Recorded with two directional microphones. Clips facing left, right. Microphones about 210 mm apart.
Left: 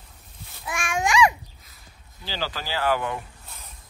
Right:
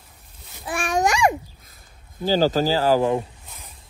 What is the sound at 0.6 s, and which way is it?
Babbling, 35° right (ahead or behind).